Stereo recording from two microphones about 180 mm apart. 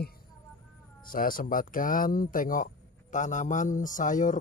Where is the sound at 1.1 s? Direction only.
50° left (ahead or behind).